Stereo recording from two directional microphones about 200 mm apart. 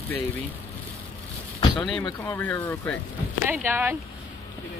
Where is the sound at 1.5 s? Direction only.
25° left (ahead or behind).